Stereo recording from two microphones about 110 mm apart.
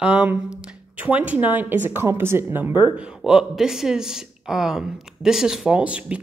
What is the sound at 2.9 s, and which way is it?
Speech, 10° right (ahead or behind).